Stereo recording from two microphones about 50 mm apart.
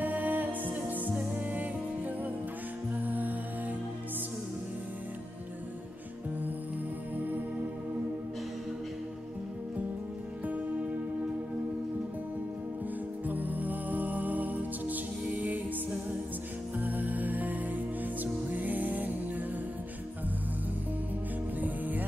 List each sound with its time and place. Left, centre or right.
0.0 s music: right
13.3 s music: right
16.7 s music: right
21.5 s music: right